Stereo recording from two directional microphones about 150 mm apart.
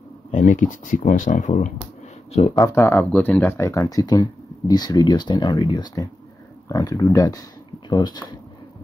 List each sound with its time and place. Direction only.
0.3 s speech: 55° left (ahead or behind)
2.5 s speech: 20° left (ahead or behind)